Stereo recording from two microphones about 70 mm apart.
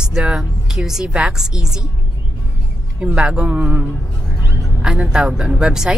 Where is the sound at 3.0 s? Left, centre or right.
Centre.